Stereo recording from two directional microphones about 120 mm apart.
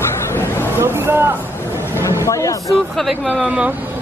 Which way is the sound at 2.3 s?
25° left (ahead or behind).